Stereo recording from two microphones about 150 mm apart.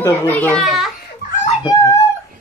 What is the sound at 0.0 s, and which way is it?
Speech, 20° left (ahead or behind).